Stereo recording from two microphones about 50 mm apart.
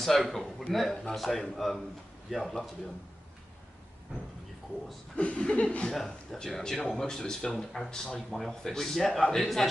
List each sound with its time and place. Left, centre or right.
0.0 s a man's voice: centre
5.1 s chuckle: left
5.9 s a man's voice: centre
7.5 s a man's voice: centre
7.9 s a man's voice: centre